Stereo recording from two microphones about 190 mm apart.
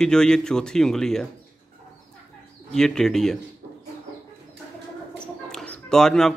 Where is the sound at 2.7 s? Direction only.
Centre (ahead or behind).